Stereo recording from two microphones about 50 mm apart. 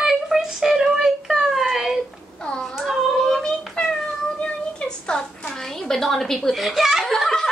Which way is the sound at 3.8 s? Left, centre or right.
Centre.